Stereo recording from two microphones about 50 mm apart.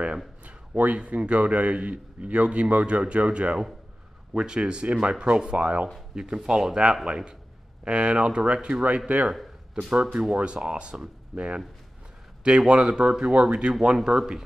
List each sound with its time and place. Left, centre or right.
0.5 s a man's voice: right
8.8 s a man's voice: right
10.3 s a man's voice: right